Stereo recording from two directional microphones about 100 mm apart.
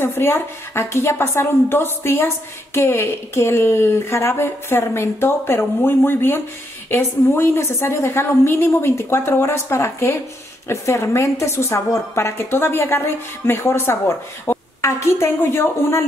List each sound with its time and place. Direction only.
0.0 s a woman's voice: 25° left (ahead or behind)